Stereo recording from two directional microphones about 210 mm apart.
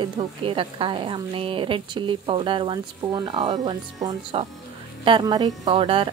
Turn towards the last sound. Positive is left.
turn(degrees=-25)  # may be behind; listen again after turning